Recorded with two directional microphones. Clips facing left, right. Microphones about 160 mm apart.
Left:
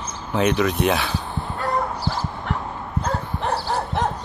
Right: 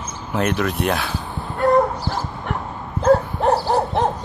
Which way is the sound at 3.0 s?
45° right (ahead or behind).